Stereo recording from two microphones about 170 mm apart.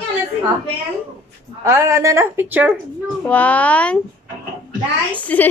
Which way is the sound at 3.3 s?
10° left (ahead or behind).